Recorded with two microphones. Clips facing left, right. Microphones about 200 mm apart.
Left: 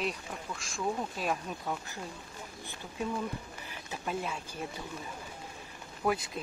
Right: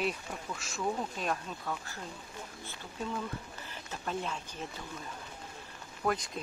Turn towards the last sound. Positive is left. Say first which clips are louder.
# left 1 dB
turn(degrees=5)  # may be behind; listen again after turning